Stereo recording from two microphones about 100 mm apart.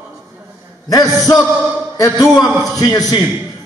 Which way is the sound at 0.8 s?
40° left (ahead or behind).